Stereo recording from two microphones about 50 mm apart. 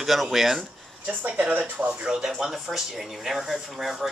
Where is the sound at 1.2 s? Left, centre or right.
Right.